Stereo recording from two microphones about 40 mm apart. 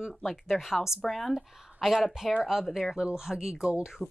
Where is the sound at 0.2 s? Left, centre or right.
Centre.